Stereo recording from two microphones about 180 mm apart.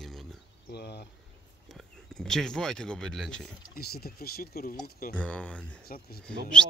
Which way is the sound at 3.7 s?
60° left (ahead or behind).